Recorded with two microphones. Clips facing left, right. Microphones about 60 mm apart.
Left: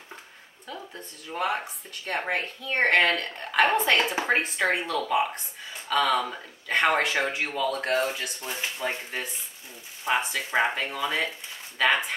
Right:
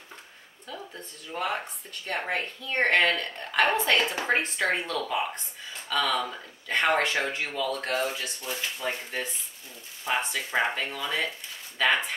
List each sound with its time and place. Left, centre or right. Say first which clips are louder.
0.7 s speech: left 1 dB; centre
3.9 s speech: left 1 dB; centre
8.5 s speech: left 1 dB; left
10.0 s speech: left 2 dB; centre
11.8 s speech: left 1 dB; centre